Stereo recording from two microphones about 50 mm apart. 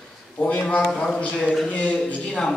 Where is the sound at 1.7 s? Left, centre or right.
Left.